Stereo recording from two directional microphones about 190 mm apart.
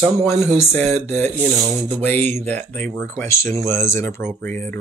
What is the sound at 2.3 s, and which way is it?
Speech, 10° left (ahead or behind).